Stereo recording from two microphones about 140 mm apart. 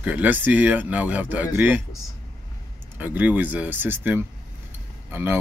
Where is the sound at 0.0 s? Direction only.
10° right (ahead or behind).